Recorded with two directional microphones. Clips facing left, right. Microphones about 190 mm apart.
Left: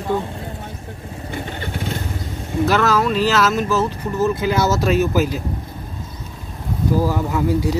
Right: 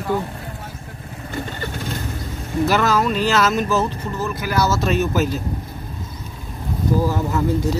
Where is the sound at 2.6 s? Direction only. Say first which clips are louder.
Left 1 dB; centre (ahead or behind).